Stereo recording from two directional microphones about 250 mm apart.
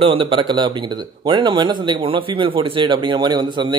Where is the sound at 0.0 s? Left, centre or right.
Right.